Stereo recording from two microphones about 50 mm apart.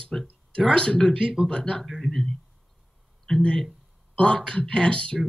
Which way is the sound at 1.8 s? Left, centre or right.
Centre.